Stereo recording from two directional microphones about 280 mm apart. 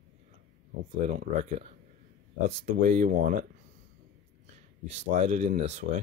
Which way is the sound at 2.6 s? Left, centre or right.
Right.